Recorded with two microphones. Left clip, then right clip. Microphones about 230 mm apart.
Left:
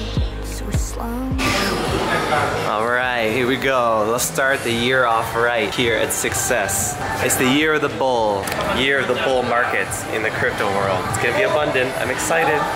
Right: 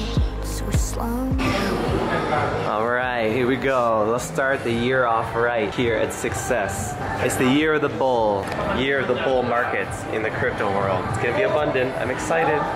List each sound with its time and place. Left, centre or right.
1.4 s music: centre
3.9 s speech: centre
4.4 s speech: centre